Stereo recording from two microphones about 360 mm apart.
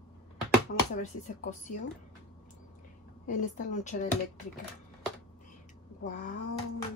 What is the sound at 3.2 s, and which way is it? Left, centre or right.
Speech, centre.